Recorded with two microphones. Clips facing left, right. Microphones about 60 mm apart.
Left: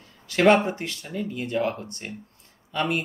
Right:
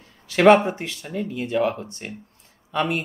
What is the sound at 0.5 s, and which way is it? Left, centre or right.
Speech, right.